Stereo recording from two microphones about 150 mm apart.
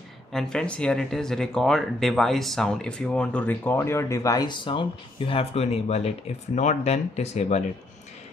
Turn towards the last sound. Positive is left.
turn(degrees=50)  # may be behind; listen again after turning